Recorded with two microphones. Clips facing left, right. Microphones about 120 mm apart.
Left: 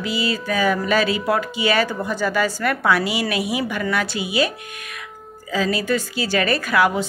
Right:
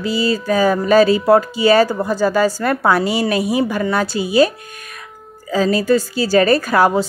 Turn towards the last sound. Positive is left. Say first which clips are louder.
# right 4 dB
turn(degrees=-40)  # may be behind; listen again after turning